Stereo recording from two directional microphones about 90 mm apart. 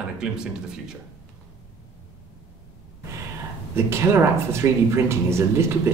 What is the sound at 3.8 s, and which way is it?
Speech, 30° right (ahead or behind).